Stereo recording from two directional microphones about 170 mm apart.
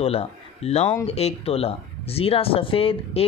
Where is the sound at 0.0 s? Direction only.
35° left (ahead or behind).